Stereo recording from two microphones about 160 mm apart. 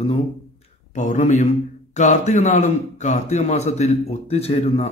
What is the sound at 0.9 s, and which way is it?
Speech, 50° left (ahead or behind).